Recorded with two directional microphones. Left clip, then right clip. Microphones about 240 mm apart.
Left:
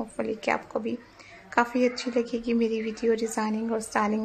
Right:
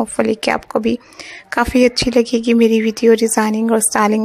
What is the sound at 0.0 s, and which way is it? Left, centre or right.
Speech, right.